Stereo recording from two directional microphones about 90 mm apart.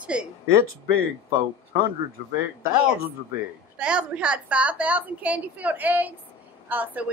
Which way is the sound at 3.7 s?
10° right (ahead or behind).